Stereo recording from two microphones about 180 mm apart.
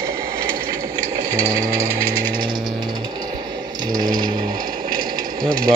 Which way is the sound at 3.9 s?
20° right (ahead or behind).